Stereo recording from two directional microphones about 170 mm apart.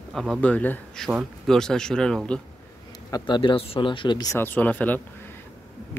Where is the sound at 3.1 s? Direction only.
25° left (ahead or behind).